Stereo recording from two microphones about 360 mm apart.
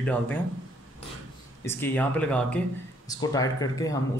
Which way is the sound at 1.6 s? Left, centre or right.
Centre.